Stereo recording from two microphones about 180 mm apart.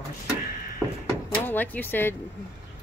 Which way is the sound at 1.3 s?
10° left (ahead or behind).